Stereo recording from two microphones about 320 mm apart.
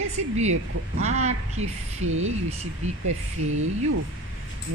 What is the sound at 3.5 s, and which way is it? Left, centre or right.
Speech, right.